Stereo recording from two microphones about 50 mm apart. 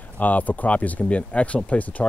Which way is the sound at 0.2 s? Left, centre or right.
Left.